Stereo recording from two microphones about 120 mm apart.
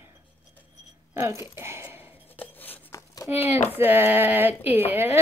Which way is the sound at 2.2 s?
15° left (ahead or behind).